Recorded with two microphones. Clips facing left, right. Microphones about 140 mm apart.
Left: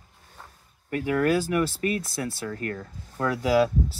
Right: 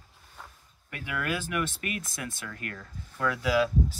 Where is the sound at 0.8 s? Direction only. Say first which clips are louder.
Left 10 dB; 40° left (ahead or behind).